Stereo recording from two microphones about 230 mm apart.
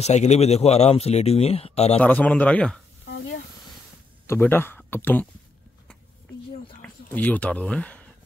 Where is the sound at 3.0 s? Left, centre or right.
Left.